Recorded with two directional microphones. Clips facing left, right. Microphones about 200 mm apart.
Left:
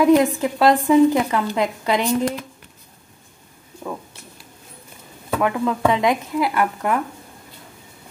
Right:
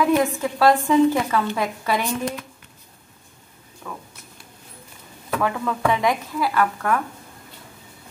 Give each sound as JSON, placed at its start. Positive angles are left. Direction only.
{"t": 0.0, "sound": "speech", "side_deg": 15}
{"t": 5.4, "sound": "speech", "side_deg": 20}